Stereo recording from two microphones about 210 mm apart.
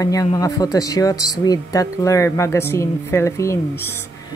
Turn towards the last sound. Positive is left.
turn(degrees=15)  # may be behind; listen again after turning